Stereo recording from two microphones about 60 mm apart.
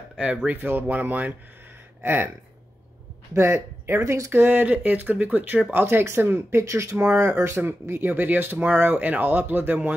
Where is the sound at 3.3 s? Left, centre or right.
Right.